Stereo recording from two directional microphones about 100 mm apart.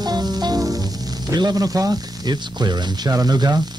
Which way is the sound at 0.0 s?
40° right (ahead or behind).